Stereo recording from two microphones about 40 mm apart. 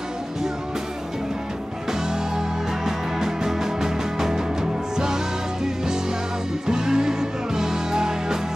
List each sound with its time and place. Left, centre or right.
1.9 s music: centre